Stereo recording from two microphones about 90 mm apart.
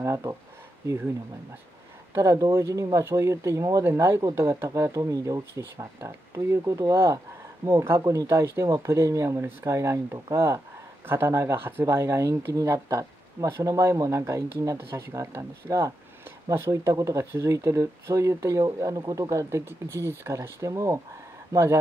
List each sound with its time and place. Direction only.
0.0 s speech: 35° right (ahead or behind)
2.1 s speech: 30° right (ahead or behind)
3.8 s speech: 25° right (ahead or behind)
8.0 s speech: 40° right (ahead or behind)
8.5 s speech: 30° right (ahead or behind)